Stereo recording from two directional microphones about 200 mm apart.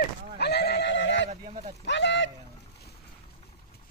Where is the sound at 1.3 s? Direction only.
35° right (ahead or behind).